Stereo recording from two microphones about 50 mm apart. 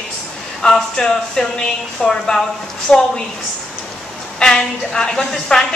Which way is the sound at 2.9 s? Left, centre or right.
Left.